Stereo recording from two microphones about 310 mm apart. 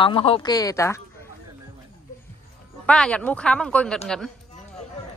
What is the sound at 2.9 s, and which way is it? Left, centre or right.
Speech, centre.